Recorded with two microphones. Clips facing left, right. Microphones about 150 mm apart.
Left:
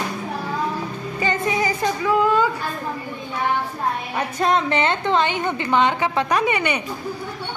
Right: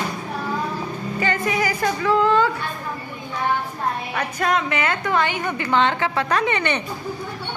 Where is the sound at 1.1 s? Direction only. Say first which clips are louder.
Left 1 dB; 20° left (ahead or behind).